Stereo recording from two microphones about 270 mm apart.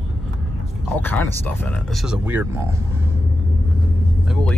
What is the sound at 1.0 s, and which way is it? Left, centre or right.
Speech, centre.